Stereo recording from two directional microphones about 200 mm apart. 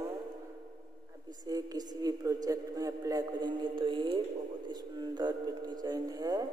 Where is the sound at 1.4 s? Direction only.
20° right (ahead or behind).